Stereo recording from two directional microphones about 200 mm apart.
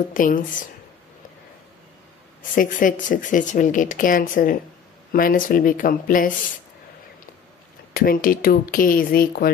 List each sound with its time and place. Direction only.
0.1 s speech: 40° left (ahead or behind)
2.5 s speech: 40° left (ahead or behind)
7.9 s speech: 45° left (ahead or behind)